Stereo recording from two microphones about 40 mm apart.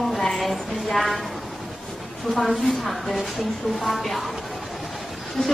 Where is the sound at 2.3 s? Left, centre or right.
Centre.